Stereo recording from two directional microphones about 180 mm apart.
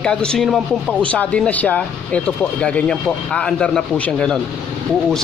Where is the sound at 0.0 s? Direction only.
5° left (ahead or behind).